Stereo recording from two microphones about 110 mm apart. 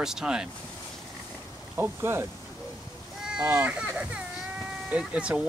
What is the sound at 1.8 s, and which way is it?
Speech, 20° right (ahead or behind).